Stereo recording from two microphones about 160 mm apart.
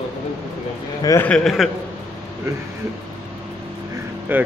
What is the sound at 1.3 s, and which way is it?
Speech, centre (ahead or behind).